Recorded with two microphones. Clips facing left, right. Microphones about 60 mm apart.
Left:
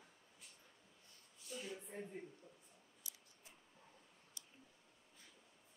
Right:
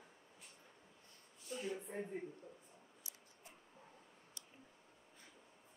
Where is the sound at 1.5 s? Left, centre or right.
Centre.